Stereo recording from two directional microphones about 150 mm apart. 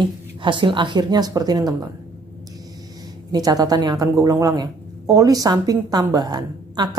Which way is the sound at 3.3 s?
25° right (ahead or behind).